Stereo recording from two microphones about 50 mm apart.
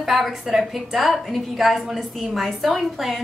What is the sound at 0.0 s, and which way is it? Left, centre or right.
A woman's voice, centre.